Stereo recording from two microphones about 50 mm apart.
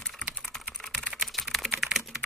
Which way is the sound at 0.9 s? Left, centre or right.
Centre.